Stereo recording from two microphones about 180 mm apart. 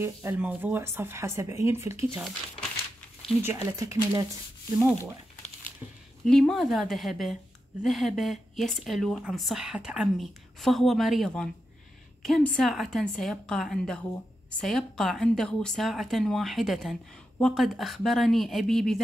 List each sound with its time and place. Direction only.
0.0 s speech: 10° right (ahead or behind)
2.1 s speech: centre (ahead or behind)
3.4 s speech: 15° right (ahead or behind)
6.2 s a woman's voice: 5° left (ahead or behind)